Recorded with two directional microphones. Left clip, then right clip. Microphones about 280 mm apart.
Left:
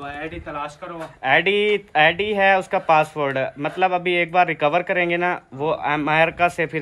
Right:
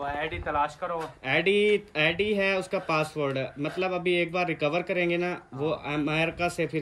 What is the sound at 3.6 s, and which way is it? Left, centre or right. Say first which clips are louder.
Speech: left 8 dB; centre.